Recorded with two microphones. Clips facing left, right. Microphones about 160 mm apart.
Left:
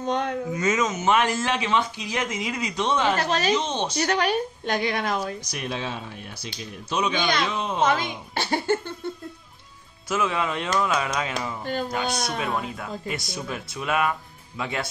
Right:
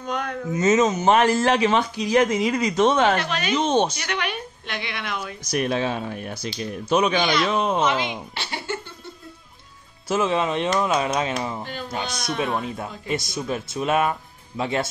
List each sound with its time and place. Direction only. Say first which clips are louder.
0.0 s speech: left 3 dB; 25° left (ahead or behind)
0.6 s speech: right 8 dB; 25° right (ahead or behind); by 3.2 s 50° right (ahead or behind)
3.2 s speech: left 3 dB; 35° left (ahead or behind)
3.5 s speech: right 6 dB; 55° right (ahead or behind)
3.9 s speech: left 6 dB; 35° left (ahead or behind)
5.5 s speech: right 8 dB; 55° right (ahead or behind)
7.8 s speech: even; 45° left (ahead or behind)
10.0 s speech: right 4 dB; 30° right (ahead or behind)